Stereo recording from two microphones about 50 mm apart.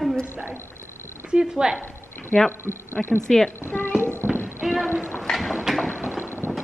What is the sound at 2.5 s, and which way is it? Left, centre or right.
Speech, left.